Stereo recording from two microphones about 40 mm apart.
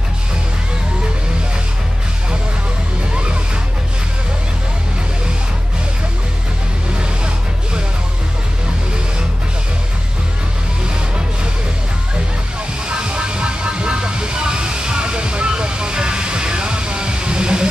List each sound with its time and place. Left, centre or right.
12.8 s vehicle: right